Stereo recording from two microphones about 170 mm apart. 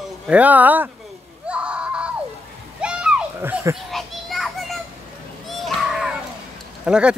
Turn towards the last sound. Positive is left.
turn(degrees=-5)  # may be behind; listen again after turning